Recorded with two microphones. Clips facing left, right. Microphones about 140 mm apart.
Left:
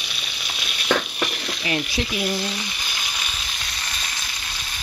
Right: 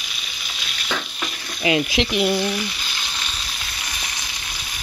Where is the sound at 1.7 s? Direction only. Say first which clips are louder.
Right 6 dB; 90° right.